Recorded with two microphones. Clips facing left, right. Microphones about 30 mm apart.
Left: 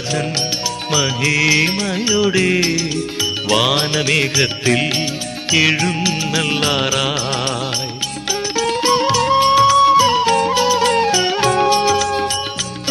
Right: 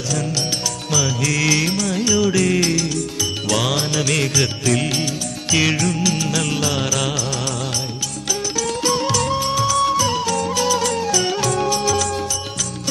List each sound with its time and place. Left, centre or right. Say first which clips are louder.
0.9 s music: left 4 dB; left